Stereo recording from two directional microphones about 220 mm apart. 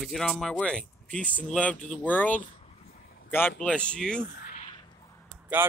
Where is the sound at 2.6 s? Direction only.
30° left (ahead or behind).